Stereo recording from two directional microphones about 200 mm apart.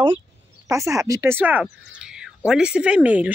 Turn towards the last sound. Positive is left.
turn(degrees=-5)  # may be behind; listen again after turning